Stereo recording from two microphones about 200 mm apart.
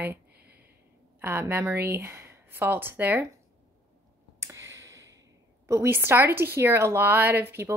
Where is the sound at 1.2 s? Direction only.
10° right (ahead or behind).